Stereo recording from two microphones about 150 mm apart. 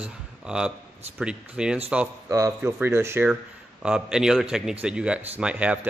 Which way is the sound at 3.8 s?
5° right (ahead or behind).